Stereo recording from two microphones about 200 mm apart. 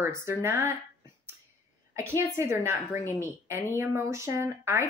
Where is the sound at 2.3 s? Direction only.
15° right (ahead or behind).